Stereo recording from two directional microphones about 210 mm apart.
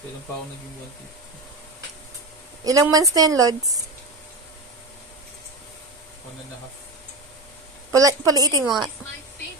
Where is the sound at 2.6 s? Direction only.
15° right (ahead or behind).